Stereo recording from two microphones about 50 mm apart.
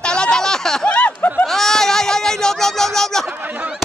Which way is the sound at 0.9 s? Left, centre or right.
Left.